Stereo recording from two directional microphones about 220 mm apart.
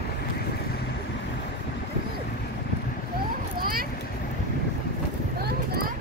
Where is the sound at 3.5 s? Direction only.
40° right (ahead or behind).